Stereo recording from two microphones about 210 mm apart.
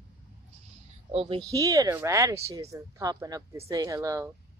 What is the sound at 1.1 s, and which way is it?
Speech, 25° right (ahead or behind).